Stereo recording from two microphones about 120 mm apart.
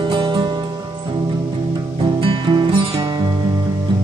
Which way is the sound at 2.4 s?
45° right (ahead or behind).